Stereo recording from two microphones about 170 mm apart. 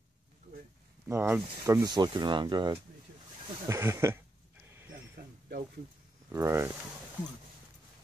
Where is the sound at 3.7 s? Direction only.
15° right (ahead or behind).